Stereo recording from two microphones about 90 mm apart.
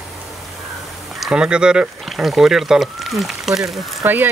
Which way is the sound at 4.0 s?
20° right (ahead or behind).